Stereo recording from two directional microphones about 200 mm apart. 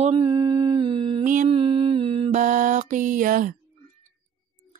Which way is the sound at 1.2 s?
35° right (ahead or behind).